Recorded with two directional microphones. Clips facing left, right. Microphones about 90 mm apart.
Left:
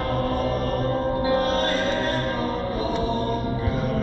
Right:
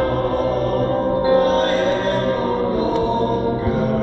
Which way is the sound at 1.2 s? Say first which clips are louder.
Right 8 dB; 30° right (ahead or behind).